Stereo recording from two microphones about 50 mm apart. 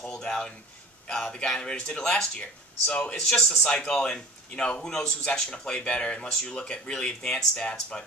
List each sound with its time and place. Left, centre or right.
0.1 s speech: centre